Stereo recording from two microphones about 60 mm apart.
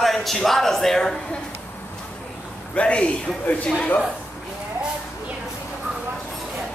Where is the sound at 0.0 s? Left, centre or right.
Centre.